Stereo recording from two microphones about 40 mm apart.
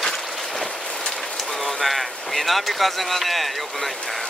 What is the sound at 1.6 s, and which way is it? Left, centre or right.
Speech, centre.